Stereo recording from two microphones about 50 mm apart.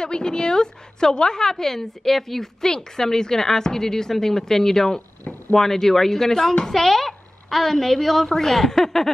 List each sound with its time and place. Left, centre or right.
0.0 s a woman's voice: centre